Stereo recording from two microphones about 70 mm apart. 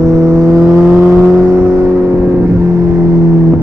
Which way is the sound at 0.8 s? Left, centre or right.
Right.